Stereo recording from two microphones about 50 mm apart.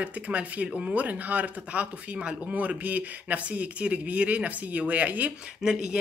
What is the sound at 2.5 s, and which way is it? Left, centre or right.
Speech, right.